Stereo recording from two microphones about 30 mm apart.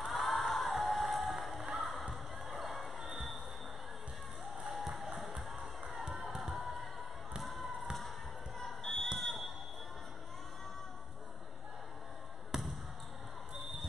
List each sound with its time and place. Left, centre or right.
0.0 s music: centre
4.6 s music: centre
5.9 s crowd: centre
8.5 s smoke detector: centre
12.5 s basketball bounce: centre